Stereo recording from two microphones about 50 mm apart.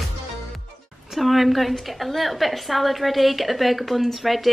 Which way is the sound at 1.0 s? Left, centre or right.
Centre.